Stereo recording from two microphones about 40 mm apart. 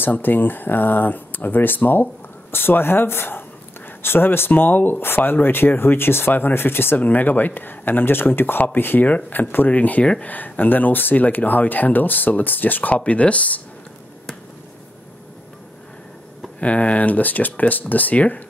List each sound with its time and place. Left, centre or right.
0.0 s speech: left
2.5 s speech: left
4.5 s speech: left
6.3 s speech: left
7.0 s speech: left
9.0 s speech: left
9.7 s speech: left
12.9 s speech: left
16.5 s speech: left